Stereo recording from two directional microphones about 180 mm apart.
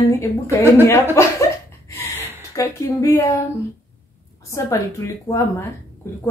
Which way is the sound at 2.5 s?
15° left (ahead or behind).